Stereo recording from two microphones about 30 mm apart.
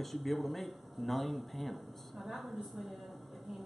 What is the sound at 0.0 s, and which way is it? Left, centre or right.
Speech, centre.